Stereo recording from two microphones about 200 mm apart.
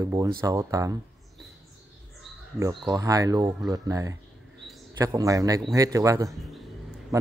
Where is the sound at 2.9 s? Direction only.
15° right (ahead or behind).